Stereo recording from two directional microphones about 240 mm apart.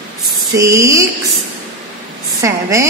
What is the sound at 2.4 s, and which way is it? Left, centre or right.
Child singing, centre.